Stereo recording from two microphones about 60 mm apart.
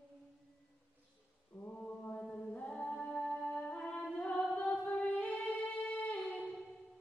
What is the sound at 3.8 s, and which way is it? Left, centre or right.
Singing, centre.